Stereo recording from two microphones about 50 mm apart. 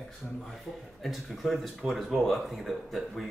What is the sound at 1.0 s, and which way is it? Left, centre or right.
Speech, centre.